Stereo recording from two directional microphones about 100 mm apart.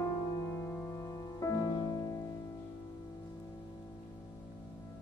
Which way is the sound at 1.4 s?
35° left (ahead or behind).